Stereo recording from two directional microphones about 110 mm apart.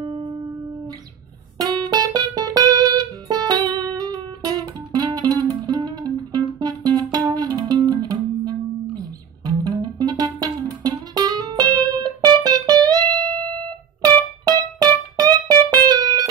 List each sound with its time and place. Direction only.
0.0 s music: 55° right (ahead or behind)
1.6 s music: 40° right (ahead or behind)
14.4 s music: 35° right (ahead or behind)